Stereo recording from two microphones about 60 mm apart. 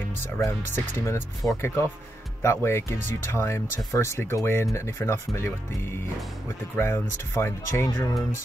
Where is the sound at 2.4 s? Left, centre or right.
Left.